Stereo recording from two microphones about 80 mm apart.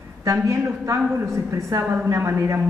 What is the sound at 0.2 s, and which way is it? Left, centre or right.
A man's voice, right.